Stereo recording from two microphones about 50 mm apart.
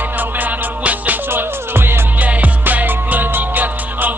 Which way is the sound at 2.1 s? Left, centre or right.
Right.